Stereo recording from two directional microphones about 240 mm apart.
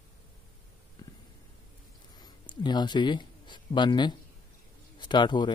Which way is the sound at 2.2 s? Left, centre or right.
Centre.